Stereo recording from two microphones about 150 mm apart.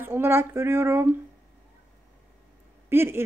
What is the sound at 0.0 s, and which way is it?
Speech, 15° right (ahead or behind).